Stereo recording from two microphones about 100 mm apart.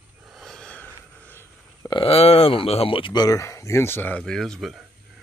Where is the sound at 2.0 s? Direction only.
80° left; by 3.2 s 60° left (ahead or behind).